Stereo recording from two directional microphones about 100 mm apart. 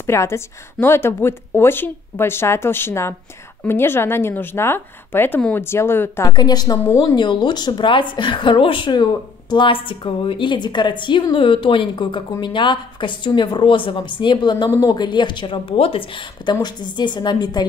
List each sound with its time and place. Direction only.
0.0 s a woman's voice: 25° left (ahead or behind)
6.2 s a woman's voice: 45° left (ahead or behind)